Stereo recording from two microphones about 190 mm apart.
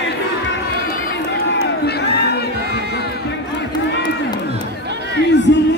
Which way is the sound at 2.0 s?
60° left (ahead or behind).